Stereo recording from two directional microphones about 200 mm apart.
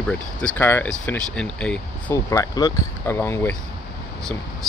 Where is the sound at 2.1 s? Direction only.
15° left (ahead or behind).